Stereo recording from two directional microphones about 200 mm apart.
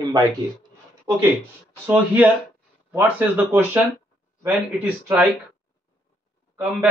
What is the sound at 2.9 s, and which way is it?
Speech, 10° right (ahead or behind).